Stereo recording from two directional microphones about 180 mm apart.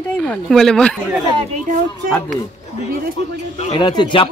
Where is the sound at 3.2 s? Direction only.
35° left (ahead or behind).